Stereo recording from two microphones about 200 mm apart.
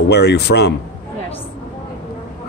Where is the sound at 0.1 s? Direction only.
55° left (ahead or behind).